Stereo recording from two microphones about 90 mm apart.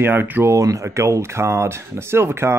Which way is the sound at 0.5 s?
35° right (ahead or behind).